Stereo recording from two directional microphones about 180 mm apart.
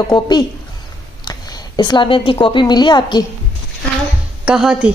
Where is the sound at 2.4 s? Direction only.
25° left (ahead or behind).